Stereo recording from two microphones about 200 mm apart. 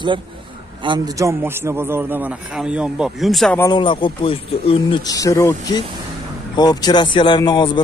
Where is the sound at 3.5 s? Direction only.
20° left (ahead or behind).